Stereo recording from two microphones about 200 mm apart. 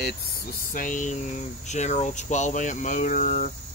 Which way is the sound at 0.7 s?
40° left (ahead or behind).